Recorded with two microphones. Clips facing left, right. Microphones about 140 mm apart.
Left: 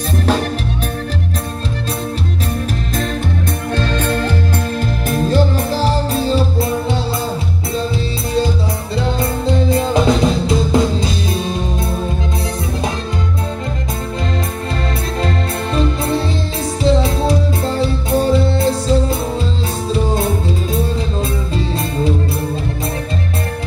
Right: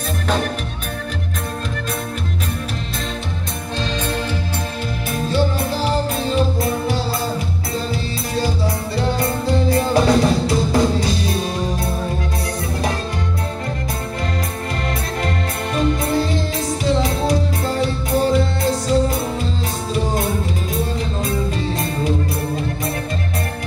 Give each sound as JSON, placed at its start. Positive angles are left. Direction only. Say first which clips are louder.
{"t": 3.7, "sound": "music", "louder": "left 4 dB", "side_deg": 55}
{"t": 5.1, "sound": "music", "louder": "left 4 dB", "side_deg": 40}
{"t": 8.9, "sound": "music", "louder": "left 3 dB", "side_deg": 25}
{"t": 15.7, "sound": "music", "louder": "left 1 dB", "side_deg": 25}
{"t": 21.5, "sound": "music", "louder": "left 3 dB", "side_deg": 25}